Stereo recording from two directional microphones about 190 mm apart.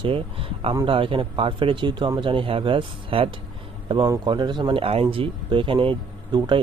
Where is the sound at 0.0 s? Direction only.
30° right (ahead or behind).